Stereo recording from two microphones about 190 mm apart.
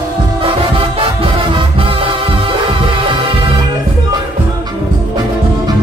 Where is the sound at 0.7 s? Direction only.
25° right (ahead or behind).